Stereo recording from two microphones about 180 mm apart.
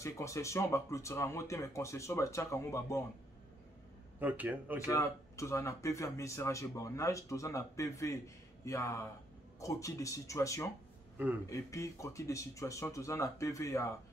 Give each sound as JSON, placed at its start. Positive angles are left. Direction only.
{"t": 0.0, "sound": "speech", "side_deg": 15}
{"t": 4.2, "sound": "a man's voice", "side_deg": -10}
{"t": 4.7, "sound": "speech", "side_deg": 15}